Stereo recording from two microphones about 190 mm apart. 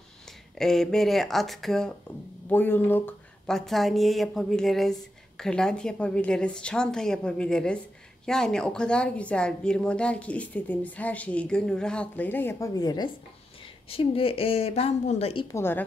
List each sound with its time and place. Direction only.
0.2 s a woman's voice: centre (ahead or behind); by 15.4 s 30° left (ahead or behind)
15.5 s a woman's voice: 10° left (ahead or behind)